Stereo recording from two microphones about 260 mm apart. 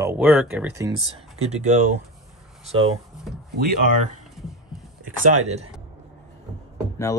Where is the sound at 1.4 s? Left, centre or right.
Right.